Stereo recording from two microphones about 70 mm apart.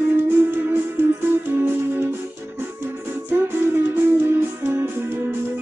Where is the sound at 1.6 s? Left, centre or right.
Right.